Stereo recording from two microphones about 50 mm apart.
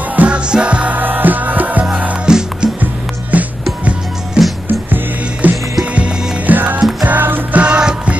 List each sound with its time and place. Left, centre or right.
0.1 s music: right
0.5 s music: right
0.9 s music: right
2.2 s music: centre
2.8 s music: right
4.4 s music: centre
5.4 s music: right
6.5 s music: right
7.5 s music: right